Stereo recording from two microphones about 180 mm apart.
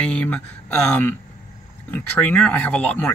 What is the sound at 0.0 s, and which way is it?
Speech, 5° left (ahead or behind).